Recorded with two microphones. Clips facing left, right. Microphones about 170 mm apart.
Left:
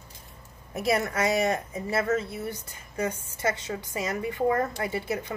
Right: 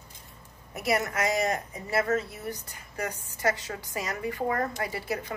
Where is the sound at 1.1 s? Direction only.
30° left (ahead or behind).